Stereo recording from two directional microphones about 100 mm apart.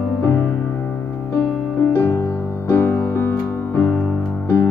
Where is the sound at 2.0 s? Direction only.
25° left (ahead or behind).